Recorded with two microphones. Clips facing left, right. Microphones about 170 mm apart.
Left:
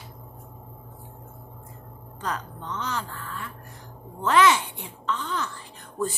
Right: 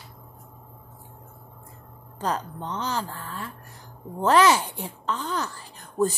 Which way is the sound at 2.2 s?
35° right (ahead or behind).